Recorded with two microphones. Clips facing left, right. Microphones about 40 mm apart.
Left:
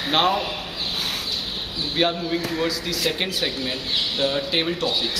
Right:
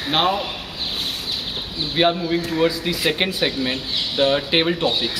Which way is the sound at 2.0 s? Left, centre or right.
Centre.